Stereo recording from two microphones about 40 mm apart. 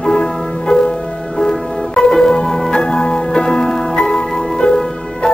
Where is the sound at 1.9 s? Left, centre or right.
Centre.